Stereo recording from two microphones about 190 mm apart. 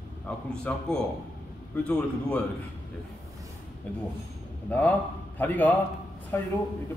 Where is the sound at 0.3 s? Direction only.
5° left (ahead or behind).